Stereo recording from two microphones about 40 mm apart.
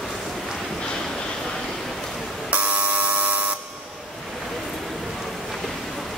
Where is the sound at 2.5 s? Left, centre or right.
Right.